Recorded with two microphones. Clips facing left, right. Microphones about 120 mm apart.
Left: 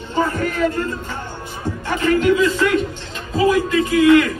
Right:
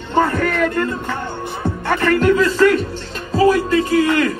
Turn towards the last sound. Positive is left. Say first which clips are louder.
# left 3 dB
turn(degrees=-35)  # may be behind; listen again after turning